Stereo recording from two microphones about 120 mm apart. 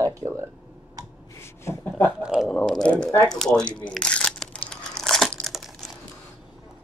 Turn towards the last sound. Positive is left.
turn(degrees=0)  # may be behind; listen again after turning